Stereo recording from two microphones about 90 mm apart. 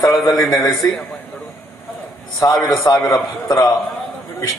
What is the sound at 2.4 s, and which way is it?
A man's voice, 35° left (ahead or behind).